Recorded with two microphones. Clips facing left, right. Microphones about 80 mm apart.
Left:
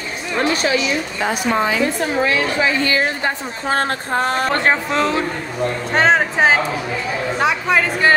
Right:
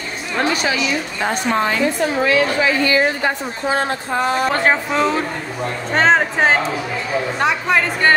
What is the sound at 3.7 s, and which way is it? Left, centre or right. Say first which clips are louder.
Speech: left 1 dB; left.